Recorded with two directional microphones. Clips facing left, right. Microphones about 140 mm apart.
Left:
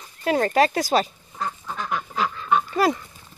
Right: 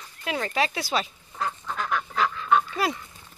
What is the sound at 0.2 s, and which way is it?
Speech, 45° left (ahead or behind).